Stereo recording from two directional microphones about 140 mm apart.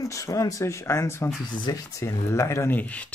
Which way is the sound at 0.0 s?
25° left (ahead or behind).